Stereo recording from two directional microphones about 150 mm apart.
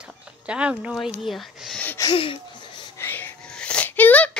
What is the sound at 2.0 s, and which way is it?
Speech, 35° left (ahead or behind).